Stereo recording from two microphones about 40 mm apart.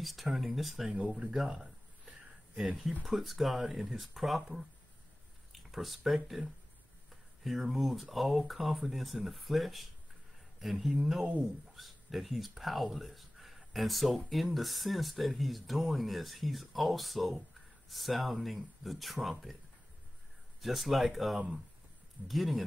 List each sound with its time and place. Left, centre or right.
0.0 s speech: centre
1.0 s speech: right
2.5 s speech: centre
20.6 s speech: centre